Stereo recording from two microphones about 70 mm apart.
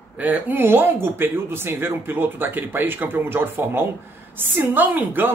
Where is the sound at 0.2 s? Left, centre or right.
Right.